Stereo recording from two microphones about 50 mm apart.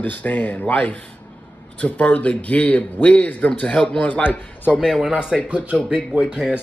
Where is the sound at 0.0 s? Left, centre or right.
Left.